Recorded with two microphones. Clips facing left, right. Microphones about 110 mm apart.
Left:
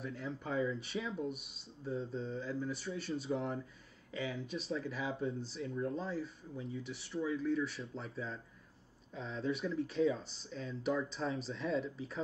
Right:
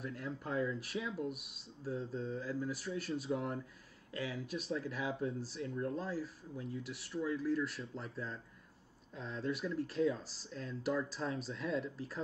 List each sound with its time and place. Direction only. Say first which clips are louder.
0.0 s speech: left 1 dB; centre (ahead or behind)